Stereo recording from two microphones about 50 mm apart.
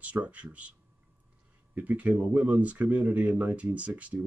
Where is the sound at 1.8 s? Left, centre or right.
Right.